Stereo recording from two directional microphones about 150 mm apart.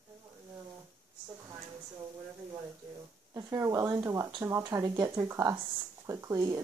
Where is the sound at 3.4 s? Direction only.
20° right (ahead or behind).